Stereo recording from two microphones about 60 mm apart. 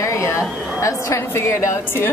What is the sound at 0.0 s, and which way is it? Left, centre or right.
A woman's voice, left.